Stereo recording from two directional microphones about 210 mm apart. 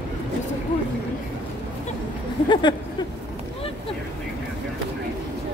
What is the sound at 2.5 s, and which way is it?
Speech, 20° left (ahead or behind).